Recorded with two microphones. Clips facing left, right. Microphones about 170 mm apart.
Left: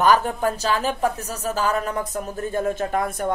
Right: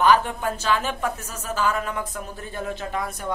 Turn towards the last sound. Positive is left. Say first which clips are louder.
# left 6 dB
turn(degrees=50)  # may be behind; listen again after turning